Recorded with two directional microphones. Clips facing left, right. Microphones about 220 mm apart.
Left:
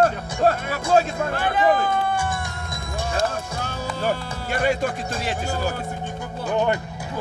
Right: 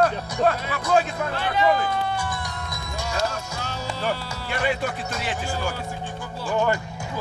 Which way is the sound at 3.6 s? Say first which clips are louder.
Left 2 dB; 50° left (ahead or behind).